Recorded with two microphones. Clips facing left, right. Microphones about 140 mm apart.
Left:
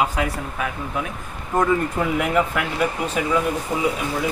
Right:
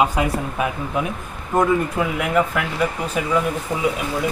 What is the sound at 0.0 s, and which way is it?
Speech, 20° right (ahead or behind).